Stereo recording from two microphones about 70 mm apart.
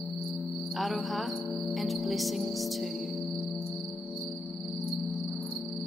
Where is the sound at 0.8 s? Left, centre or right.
Centre.